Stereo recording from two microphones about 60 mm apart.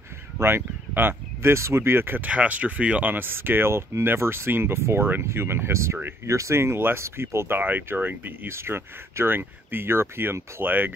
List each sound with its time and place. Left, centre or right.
0.4 s speech: right
2.2 s speech: right
8.5 s speech: right